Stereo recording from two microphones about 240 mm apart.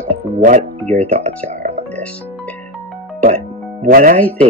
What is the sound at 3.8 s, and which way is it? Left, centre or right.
Speech, right.